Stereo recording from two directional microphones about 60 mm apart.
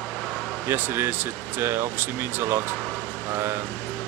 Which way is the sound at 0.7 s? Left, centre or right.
Right.